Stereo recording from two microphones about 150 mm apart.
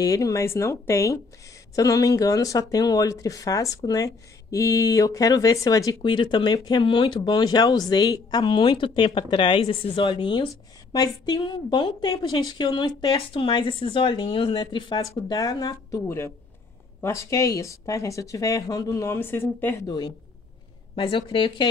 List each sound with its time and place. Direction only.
0.0 s speech: 20° left (ahead or behind)
19.9 s speech: 30° left (ahead or behind)